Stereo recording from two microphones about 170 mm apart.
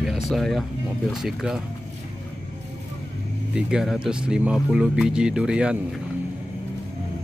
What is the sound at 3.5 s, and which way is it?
Speech, 5° right (ahead or behind).